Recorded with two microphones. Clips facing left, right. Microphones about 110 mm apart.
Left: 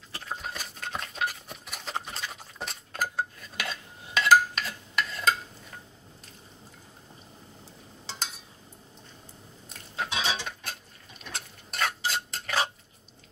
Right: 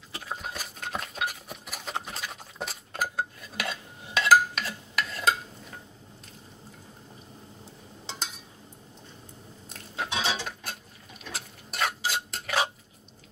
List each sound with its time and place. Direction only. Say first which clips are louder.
0.1 s a sound: even; centre (ahead or behind)
10.1 s cutlery: right 1 dB; 15° right (ahead or behind)
10.4 s cutlery: right 1 dB; centre (ahead or behind)
11.3 s stir: even; 5° right (ahead or behind)